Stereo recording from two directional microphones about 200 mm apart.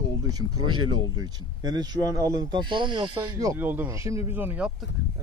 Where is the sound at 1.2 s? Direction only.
20° right (ahead or behind).